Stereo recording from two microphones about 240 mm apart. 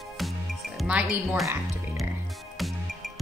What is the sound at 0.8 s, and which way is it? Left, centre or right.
Music, centre.